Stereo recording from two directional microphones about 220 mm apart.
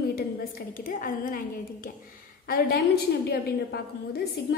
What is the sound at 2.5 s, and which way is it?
A woman's voice, 45° left (ahead or behind).